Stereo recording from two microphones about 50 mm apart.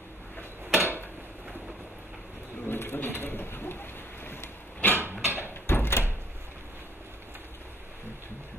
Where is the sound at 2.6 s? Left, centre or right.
Left.